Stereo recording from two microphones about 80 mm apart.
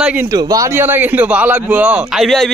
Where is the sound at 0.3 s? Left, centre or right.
Right.